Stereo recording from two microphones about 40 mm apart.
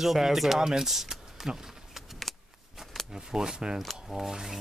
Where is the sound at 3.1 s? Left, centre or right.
Centre.